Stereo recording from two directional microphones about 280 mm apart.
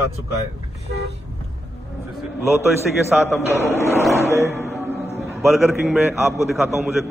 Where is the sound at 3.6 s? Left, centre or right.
Centre.